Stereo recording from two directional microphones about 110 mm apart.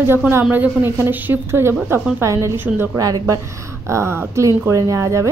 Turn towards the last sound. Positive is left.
turn(degrees=-30)  # may be behind; listen again after turning